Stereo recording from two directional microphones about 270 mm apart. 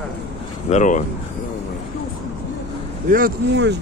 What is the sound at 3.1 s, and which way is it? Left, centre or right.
Speech, right.